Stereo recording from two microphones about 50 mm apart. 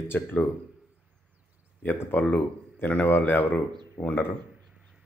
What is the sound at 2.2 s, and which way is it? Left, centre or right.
Speech, left.